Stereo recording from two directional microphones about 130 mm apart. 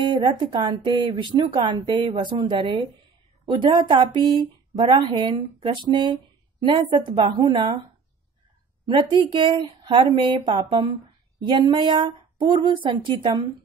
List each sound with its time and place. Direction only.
0.0 s speech: 35° right (ahead or behind)
8.8 s speech: 40° right (ahead or behind)